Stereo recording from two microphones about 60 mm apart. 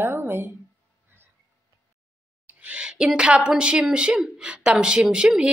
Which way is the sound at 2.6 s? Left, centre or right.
Centre.